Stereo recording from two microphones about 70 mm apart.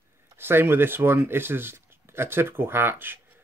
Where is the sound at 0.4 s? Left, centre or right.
Right.